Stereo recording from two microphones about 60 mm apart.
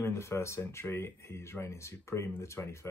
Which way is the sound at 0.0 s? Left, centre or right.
Left.